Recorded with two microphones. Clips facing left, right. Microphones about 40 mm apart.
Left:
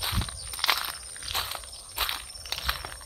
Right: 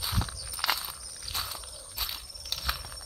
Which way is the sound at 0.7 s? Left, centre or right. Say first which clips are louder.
Left 5 dB; left.